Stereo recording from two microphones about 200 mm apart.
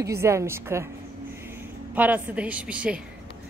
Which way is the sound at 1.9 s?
10° right (ahead or behind).